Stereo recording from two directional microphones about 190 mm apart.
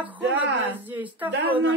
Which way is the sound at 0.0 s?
10° right (ahead or behind).